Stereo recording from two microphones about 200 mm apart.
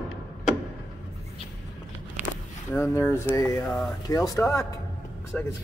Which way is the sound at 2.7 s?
10° left (ahead or behind).